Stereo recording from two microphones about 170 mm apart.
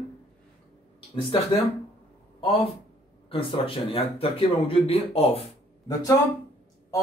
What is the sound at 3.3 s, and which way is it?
Speech, 30° left (ahead or behind).